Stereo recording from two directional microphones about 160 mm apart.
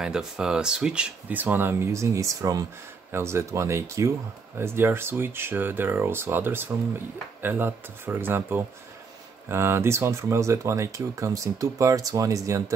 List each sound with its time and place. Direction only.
0.0 s speech: 5° right (ahead or behind); by 12.7 s 20° right (ahead or behind)